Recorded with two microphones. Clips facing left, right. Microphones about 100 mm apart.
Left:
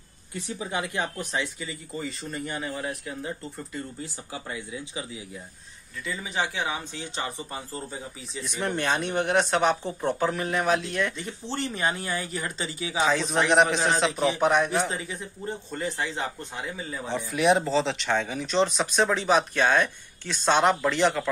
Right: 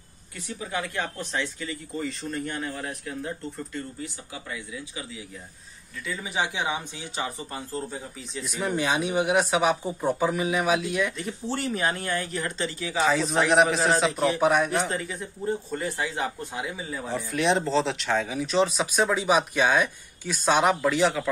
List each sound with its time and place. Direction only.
0.3 s speech: 25° left (ahead or behind); by 3.8 s 5° left (ahead or behind)
4.0 s speech: 30° left (ahead or behind)
6.0 s speech: centre (ahead or behind)
6.3 s speech: 15° right (ahead or behind)
7.2 s speech: centre (ahead or behind)